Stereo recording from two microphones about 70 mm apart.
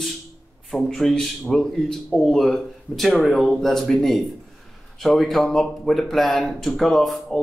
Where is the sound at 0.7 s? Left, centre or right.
Centre.